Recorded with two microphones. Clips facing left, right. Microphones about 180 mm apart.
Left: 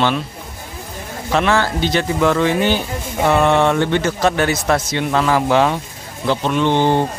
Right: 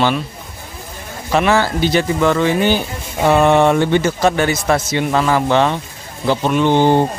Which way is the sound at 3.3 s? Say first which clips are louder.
Right 3 dB; 15° right (ahead or behind).